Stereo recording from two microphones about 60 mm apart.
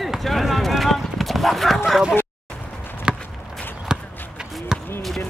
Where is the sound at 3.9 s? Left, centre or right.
Centre.